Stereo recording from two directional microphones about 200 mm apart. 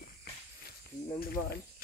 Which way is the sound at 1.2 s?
50° left (ahead or behind).